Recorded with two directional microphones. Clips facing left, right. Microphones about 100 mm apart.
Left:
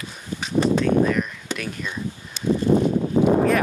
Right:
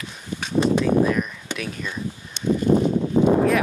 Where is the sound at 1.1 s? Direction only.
5° right (ahead or behind).